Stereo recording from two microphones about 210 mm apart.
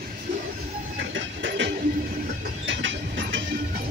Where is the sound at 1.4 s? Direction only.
60° right (ahead or behind).